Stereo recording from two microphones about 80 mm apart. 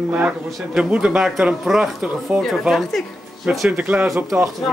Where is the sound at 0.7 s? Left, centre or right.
Centre.